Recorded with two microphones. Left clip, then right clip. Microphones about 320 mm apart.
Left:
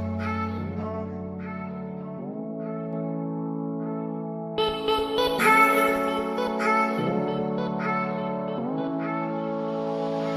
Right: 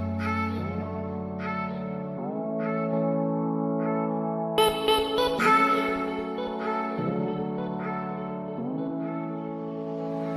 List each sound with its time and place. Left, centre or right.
4.6 s music: right
5.1 s music: centre; by 6.1 s left
6.6 s music: left